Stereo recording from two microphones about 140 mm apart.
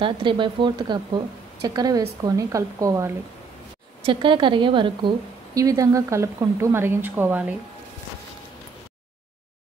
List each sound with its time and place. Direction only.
0.0 s a woman's voice: 35° right (ahead or behind)
4.0 s a woman's voice: 35° right (ahead or behind)
5.5 s a woman's voice: 25° right (ahead or behind)